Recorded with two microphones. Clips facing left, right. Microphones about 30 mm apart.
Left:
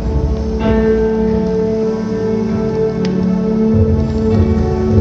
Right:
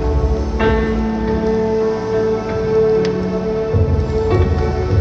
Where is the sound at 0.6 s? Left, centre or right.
Centre.